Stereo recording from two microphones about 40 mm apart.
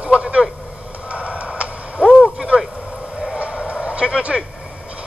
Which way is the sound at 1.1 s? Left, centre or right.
Right.